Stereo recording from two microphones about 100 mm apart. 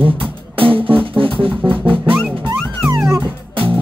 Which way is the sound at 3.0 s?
25° right (ahead or behind).